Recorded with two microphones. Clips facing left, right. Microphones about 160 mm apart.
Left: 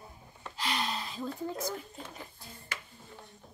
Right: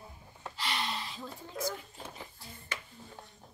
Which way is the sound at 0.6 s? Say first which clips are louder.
Left 2 dB; 45° left (ahead or behind).